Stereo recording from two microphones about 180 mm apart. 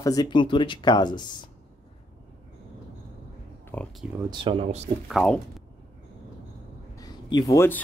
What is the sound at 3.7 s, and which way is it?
Speech, 5° left (ahead or behind).